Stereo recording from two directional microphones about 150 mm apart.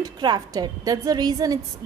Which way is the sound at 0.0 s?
25° right (ahead or behind).